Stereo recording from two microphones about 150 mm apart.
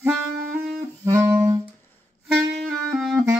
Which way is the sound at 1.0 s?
20° right (ahead or behind).